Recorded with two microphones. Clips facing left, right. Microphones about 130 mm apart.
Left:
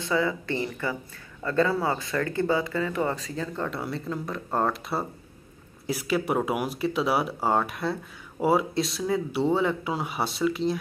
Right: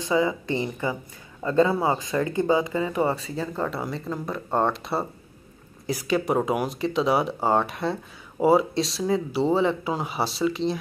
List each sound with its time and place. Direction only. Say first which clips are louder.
0.0 s speech: right 3 dB; 20° right (ahead or behind); by 10.8 s centre (ahead or behind)